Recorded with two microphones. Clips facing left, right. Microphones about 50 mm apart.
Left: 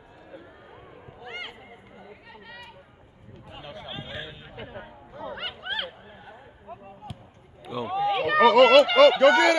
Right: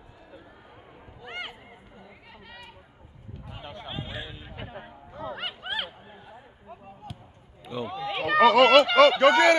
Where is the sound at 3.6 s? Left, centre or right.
Right.